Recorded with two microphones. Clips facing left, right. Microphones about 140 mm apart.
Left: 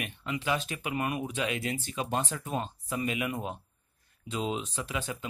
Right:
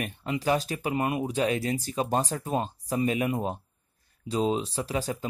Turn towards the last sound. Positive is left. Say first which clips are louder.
# right 5 dB
turn(degrees=-35)  # may be behind; listen again after turning